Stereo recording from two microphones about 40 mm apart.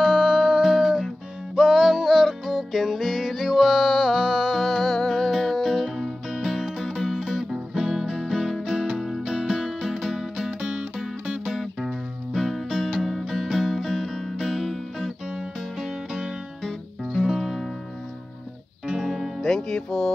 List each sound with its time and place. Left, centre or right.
0.0 s music: centre
1.5 s music: centre
4.7 s music: centre
7.2 s music: centre
10.6 s music: right
11.8 s music: centre
15.2 s music: centre
18.9 s music: centre
19.4 s music: centre